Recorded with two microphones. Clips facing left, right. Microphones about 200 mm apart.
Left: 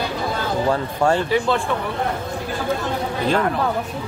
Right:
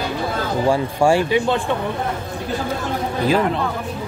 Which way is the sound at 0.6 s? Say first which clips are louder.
Right 4 dB; 10° right (ahead or behind).